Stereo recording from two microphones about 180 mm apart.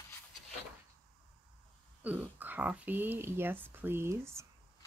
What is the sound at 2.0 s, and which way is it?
Speech, 10° right (ahead or behind).